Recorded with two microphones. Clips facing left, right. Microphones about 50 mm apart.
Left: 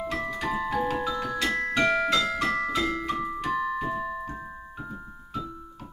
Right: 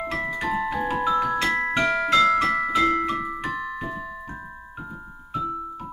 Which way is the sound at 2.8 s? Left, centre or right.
Right.